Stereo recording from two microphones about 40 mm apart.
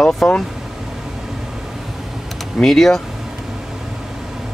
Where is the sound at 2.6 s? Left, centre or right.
Centre.